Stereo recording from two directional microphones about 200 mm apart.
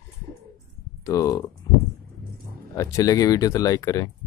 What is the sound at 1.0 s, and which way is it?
Speech, 15° left (ahead or behind).